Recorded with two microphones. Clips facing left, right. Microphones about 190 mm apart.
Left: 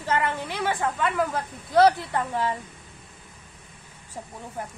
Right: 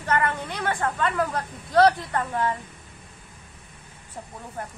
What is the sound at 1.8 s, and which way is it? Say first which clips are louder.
Speech: left 1 dB; 15° left (ahead or behind).